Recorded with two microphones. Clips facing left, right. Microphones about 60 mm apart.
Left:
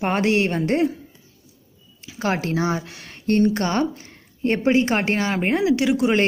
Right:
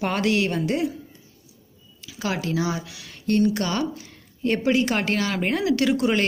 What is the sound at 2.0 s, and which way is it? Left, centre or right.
Speech, left.